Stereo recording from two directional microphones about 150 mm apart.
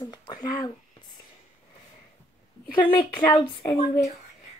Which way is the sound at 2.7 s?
35° left (ahead or behind).